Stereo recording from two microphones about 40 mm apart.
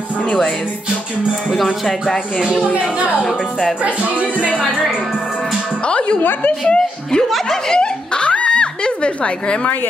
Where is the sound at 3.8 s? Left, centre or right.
Right.